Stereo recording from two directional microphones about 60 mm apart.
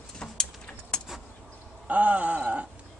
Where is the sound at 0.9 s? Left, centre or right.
Centre.